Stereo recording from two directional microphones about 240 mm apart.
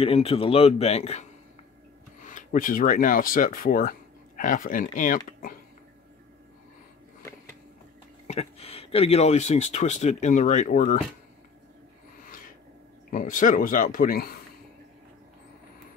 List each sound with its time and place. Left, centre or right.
0.0 s speech: left
2.2 s speech: left
8.3 s speech: left
13.1 s speech: left